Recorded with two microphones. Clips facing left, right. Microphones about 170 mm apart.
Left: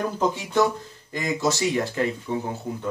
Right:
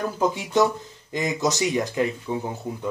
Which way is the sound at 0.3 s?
15° right (ahead or behind).